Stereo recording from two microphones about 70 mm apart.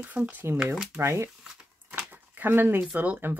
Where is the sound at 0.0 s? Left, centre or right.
Right.